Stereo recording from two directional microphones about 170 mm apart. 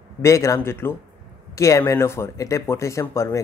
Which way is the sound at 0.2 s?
15° left (ahead or behind).